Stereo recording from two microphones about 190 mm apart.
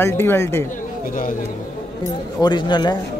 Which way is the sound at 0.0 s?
10° left (ahead or behind).